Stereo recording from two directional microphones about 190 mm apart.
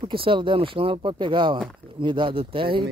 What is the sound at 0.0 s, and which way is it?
Speech, 30° right (ahead or behind).